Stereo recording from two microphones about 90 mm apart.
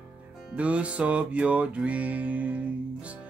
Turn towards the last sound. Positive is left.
turn(degrees=-15)  # may be behind; listen again after turning